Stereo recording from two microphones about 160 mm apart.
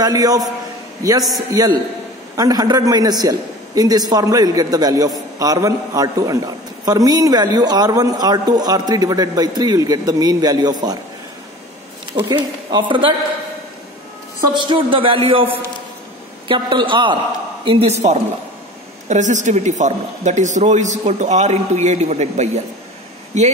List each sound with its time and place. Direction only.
0.0 s a man's voice: 25° right (ahead or behind)
12.1 s speech: 30° right (ahead or behind)
14.5 s a man's voice: 30° right (ahead or behind)